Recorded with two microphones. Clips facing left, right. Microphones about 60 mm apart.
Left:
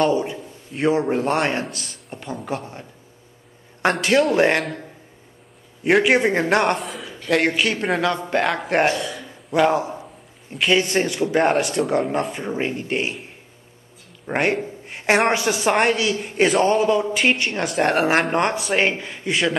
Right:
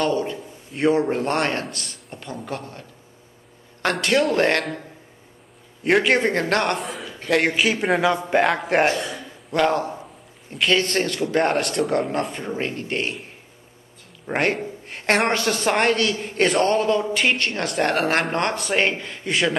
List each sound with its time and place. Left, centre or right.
0.1 s a woman's voice: centre
3.9 s a woman's voice: centre
5.9 s a man's voice: centre
6.8 s a sound: centre
7.2 s a woman's voice: centre
8.9 s a sound: right
9.5 s a man's voice: centre
18.6 s a woman's voice: centre